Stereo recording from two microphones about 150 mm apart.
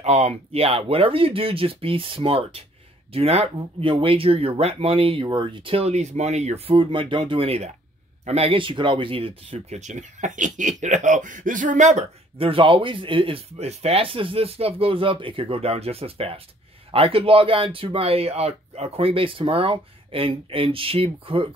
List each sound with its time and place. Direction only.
0.0 s speech: 45° right (ahead or behind)
12.4 s speech: 35° right (ahead or behind)